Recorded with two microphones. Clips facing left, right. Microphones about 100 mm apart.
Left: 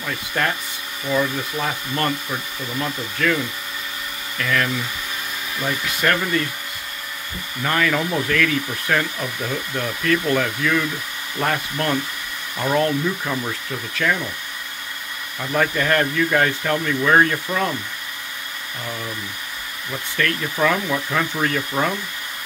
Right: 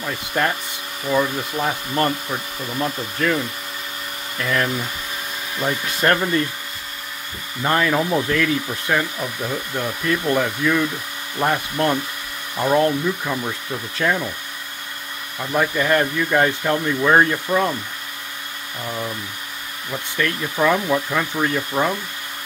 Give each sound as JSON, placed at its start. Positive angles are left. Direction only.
{"t": 0.0, "sound": "speech", "side_deg": -20}
{"t": 4.4, "sound": "speech", "side_deg": -25}
{"t": 7.6, "sound": "speech", "side_deg": -25}
{"t": 15.5, "sound": "speech", "side_deg": -15}
{"t": 19.9, "sound": "speech", "side_deg": -15}